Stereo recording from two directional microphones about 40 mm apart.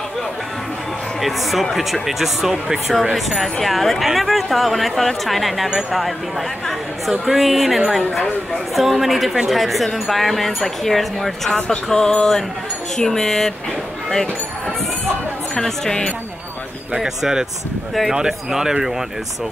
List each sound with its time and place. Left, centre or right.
1.2 s speech: centre
11.5 s speech: left
15.6 s speech: centre
17.0 s speech: centre